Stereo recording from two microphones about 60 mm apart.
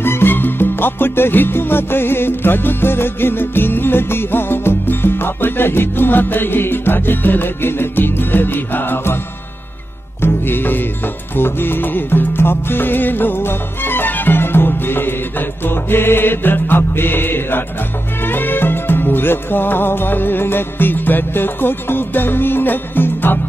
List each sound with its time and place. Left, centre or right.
0.0 s music: left
10.2 s music: left